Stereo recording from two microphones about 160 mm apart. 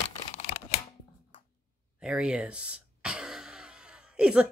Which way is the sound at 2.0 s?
5° right (ahead or behind).